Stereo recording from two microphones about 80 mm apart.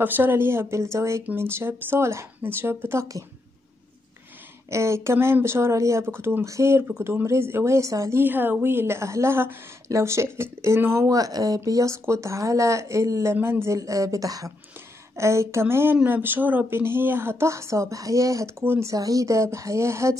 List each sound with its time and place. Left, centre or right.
0.0 s speech: right
4.6 s speech: right
8.2 s a woman's voice: right
11.1 s speech: right
13.7 s speech: right
18.6 s a woman's voice: right
18.9 s speech: right